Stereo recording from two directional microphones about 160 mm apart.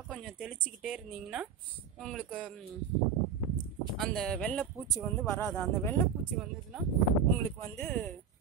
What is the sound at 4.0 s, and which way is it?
Speech, 5° left (ahead or behind).